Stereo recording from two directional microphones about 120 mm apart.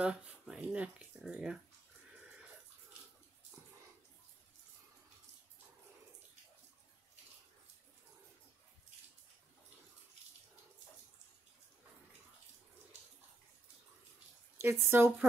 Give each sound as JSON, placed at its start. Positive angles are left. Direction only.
{"t": 0.0, "sound": "speech", "side_deg": -10}
{"t": 14.6, "sound": "speech", "side_deg": -20}